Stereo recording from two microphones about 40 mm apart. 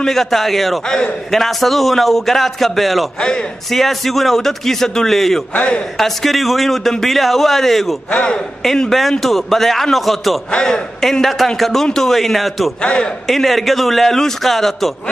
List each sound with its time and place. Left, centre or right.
0.0 s a man's voice: centre
0.8 s a man's voice: left
1.3 s a man's voice: centre
5.5 s a man's voice: left
5.9 s a man's voice: centre
9.2 s a man's voice: centre
10.6 s a man's voice: centre
12.8 s a man's voice: left
13.3 s a man's voice: centre